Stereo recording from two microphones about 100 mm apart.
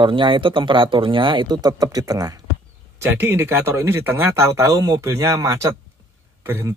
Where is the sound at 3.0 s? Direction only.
20° right (ahead or behind).